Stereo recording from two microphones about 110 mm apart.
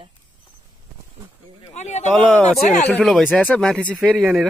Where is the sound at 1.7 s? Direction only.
90° left.